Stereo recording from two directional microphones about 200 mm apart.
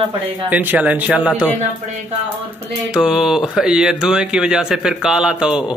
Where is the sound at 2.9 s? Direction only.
5° right (ahead or behind).